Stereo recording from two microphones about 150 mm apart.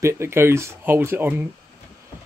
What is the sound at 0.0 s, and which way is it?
Speech, 15° right (ahead or behind).